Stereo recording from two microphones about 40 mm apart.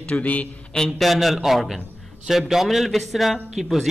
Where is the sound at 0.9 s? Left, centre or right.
Centre.